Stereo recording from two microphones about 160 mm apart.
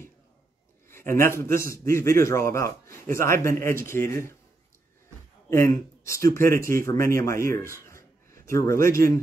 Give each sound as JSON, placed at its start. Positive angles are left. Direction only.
{"t": 0.8, "sound": "a man's voice", "side_deg": 15}
{"t": 5.5, "sound": "a man's voice", "side_deg": 15}
{"t": 7.8, "sound": "a sound", "side_deg": 15}